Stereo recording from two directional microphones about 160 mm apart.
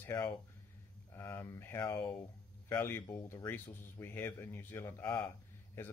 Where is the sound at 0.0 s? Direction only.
20° left (ahead or behind).